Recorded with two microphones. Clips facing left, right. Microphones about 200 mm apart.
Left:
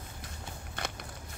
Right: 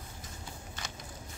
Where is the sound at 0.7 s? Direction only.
60° left (ahead or behind).